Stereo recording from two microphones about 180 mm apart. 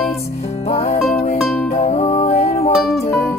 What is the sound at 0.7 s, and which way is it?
Music, 35° left (ahead or behind).